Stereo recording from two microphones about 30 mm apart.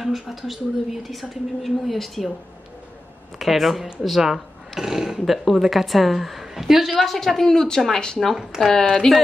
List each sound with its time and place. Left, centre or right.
0.0 s a woman's voice: centre
3.3 s a woman's voice: centre
4.2 s speech: centre
6.9 s speech: centre
7.9 s speech: left
8.6 s speech: centre